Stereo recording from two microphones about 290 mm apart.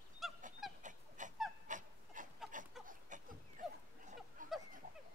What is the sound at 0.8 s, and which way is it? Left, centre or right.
Dog, right.